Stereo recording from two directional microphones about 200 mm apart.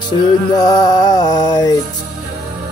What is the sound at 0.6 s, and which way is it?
Music, 20° left (ahead or behind).